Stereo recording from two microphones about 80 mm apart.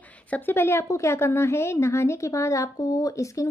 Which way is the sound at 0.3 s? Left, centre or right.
Left.